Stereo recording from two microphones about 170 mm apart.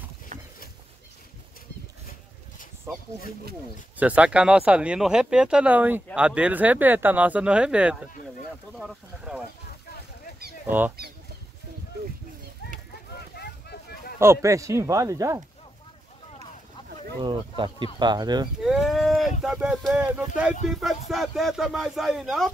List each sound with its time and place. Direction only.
0.3 s a sound: 45° right (ahead or behind)
3.9 s speech: 10° right (ahead or behind)
13.1 s a sound: 70° left (ahead or behind)
14.2 s speech: 15° right (ahead or behind)
17.2 s speech: 30° right (ahead or behind)
18.6 s livestock: centre (ahead or behind)
19.4 s speech: centre (ahead or behind)